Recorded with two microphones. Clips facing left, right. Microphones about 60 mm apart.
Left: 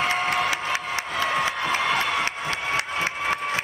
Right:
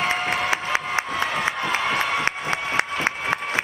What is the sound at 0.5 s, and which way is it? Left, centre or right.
Music, right.